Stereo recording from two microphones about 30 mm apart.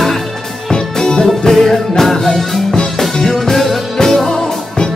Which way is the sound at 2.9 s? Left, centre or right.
Centre.